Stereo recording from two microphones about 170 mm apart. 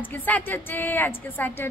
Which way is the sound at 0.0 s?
10° left (ahead or behind).